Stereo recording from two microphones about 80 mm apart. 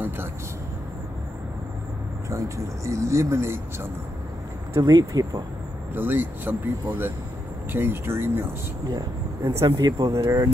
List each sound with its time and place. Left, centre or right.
2.2 s speech: right
4.8 s speech: right
5.9 s speech: right
8.8 s speech: right
10.0 s speech: right